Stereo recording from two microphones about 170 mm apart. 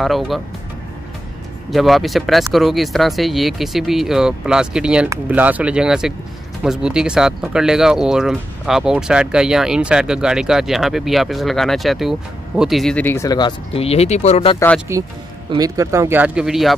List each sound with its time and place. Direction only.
0.0 s speech: centre (ahead or behind)
1.7 s speech: centre (ahead or behind); by 14.6 s 35° left (ahead or behind)
14.9 s speech: 15° right (ahead or behind)